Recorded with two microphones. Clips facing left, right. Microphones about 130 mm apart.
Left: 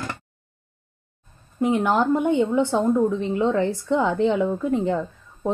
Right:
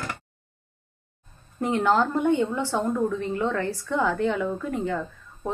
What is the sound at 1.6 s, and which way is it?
A woman's voice, 5° left (ahead or behind).